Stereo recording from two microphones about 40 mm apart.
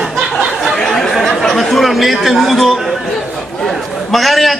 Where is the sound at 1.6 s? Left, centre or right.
Centre.